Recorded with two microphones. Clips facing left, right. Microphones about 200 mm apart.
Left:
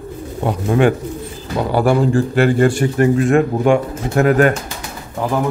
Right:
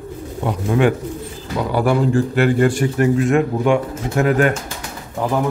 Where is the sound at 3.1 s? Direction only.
50° left (ahead or behind).